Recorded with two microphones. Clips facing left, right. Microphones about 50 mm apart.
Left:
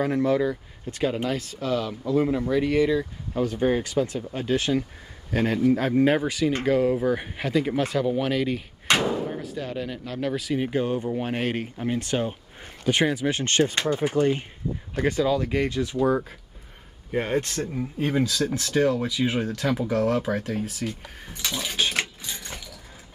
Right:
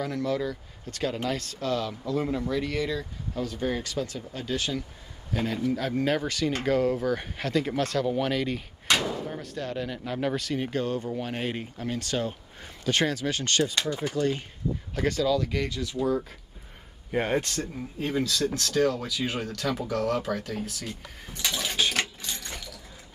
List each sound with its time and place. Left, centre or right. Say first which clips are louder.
0.0 s speech: left 6 dB; left
6.3 s speech: left 3 dB; centre
13.4 s speech: left 4 dB; left
17.1 s a sound: left 1 dB; centre
17.7 s speech: left 5 dB; left
18.2 s speech: left 2 dB; centre
21.4 s a sound: even; centre